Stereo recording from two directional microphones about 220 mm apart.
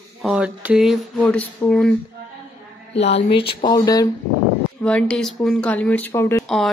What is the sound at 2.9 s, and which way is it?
Speech, 25° left (ahead or behind).